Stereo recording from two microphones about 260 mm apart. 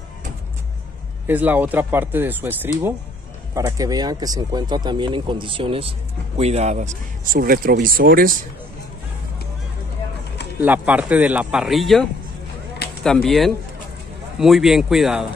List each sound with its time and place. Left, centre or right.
1.2 s speech: centre; by 8.4 s right
10.6 s speech: centre